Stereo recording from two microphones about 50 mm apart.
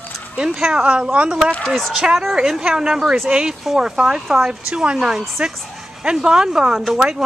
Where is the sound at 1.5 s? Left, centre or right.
Centre.